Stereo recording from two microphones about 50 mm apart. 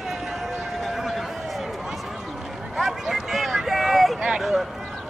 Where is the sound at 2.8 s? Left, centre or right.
Centre.